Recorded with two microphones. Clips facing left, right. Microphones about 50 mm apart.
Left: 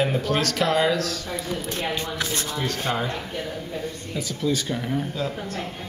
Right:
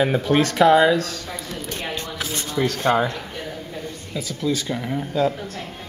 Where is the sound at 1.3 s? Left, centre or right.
Centre.